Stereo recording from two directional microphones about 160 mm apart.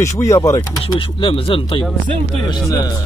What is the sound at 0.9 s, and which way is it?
Speech, 35° left (ahead or behind).